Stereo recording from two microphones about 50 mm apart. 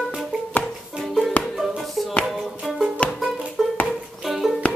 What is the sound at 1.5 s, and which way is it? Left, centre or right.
Hands, centre.